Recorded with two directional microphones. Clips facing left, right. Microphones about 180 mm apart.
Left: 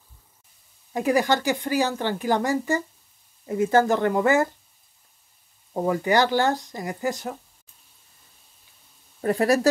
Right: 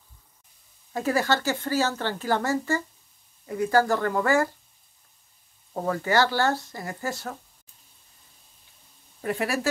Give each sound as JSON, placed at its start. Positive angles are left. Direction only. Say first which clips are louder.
{"t": 0.9, "sound": "speech", "louder": "left 3 dB", "side_deg": 15}
{"t": 5.7, "sound": "speech", "louder": "left 4 dB", "side_deg": 15}
{"t": 9.2, "sound": "speech", "louder": "left 7 dB", "side_deg": 40}